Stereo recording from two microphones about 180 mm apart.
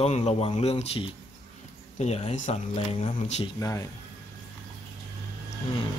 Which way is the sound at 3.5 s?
15° left (ahead or behind).